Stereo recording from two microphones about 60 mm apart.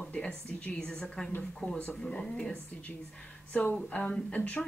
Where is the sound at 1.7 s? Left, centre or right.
Left.